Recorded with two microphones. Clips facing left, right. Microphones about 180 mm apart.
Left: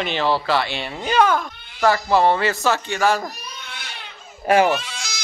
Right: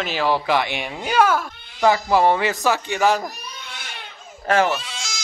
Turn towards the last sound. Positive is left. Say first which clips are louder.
# even
turn(degrees=-25)  # may be behind; listen again after turning